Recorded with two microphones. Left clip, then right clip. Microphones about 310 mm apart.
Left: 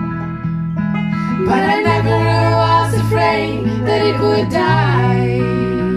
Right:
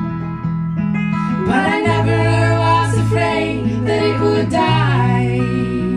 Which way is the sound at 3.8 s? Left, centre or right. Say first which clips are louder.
Left 2 dB; centre.